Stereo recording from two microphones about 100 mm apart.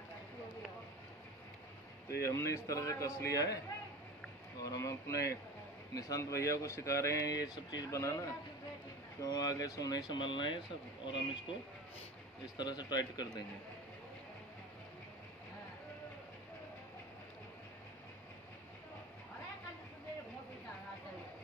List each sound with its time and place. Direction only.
2.0 s speech: 30° left (ahead or behind)
4.6 s speech: 35° left (ahead or behind); by 11.5 s 55° left (ahead or behind)
12.5 s speech: 45° left (ahead or behind)